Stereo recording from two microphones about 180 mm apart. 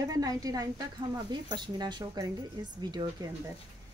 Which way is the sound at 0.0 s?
20° right (ahead or behind).